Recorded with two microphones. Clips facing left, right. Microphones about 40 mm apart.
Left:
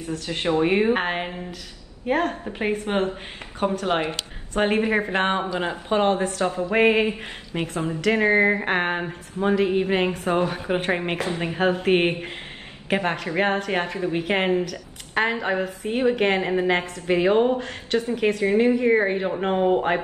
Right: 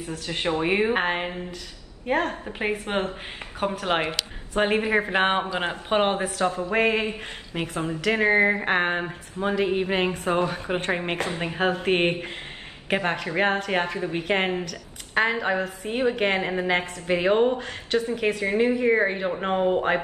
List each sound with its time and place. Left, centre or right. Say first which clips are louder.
0.1 s a woman's voice: left 3 dB; centre
3.8 s speech: left 1 dB; right
4.6 s a woman's voice: left 1 dB; centre
5.5 s speech: left 1 dB; right
6.1 s a woman's voice: left 3 dB; centre
6.7 s a woman's voice: left 6 dB; centre
7.5 s a woman's voice: left 2 dB; centre
11.2 s speech: left 2 dB; right
11.5 s a woman's voice: left 3 dB; centre